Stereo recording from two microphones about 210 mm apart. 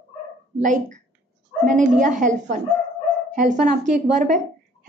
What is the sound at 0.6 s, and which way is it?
A woman's voice, 35° right (ahead or behind).